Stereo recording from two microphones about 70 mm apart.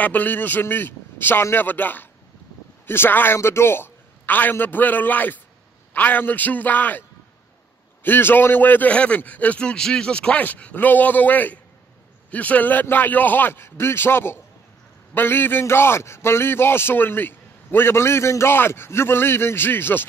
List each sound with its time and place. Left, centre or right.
0.0 s a man's voice: left